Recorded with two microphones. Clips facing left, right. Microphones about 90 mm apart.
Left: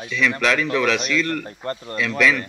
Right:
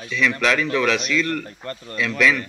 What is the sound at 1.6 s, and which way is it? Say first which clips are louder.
Speech: left 4 dB; 35° left (ahead or behind).